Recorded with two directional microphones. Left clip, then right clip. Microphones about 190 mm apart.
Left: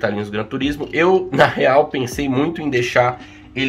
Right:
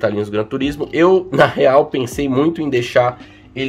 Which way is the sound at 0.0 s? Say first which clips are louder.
Right 3 dB; 50° right (ahead or behind).